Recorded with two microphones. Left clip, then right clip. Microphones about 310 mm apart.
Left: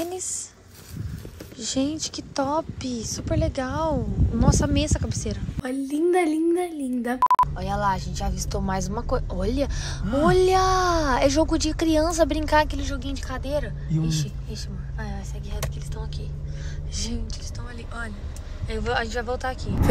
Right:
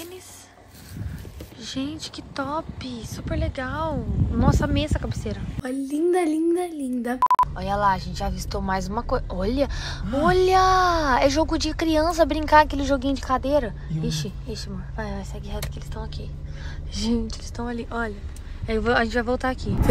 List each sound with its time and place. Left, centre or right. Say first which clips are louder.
1.6 s speech: left 5 dB; centre
16.9 s a woman's voice: right 7 dB; centre
18.9 s speech: right 4 dB; centre